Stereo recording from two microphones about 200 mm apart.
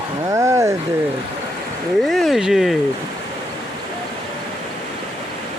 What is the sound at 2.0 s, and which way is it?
Speech, centre (ahead or behind).